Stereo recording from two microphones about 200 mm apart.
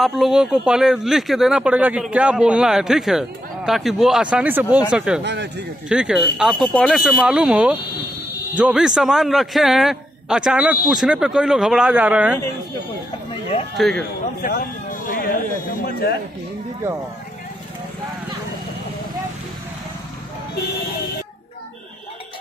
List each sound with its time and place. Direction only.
0.0 s speech: centre (ahead or behind)
5.2 s speech: 60° right (ahead or behind)
5.9 s speech: 5° right (ahead or behind)
13.3 s a sound: 30° left (ahead or behind)
13.7 s speech: centre (ahead or behind)
14.4 s speech: 50° left (ahead or behind)